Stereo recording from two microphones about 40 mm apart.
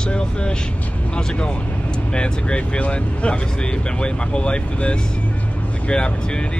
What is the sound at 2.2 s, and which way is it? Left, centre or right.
Speech, left.